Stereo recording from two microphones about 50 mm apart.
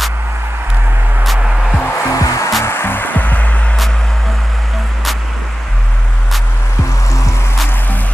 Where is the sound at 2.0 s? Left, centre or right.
Left.